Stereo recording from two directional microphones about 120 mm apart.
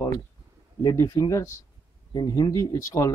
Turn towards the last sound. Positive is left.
turn(degrees=30)  # may be behind; listen again after turning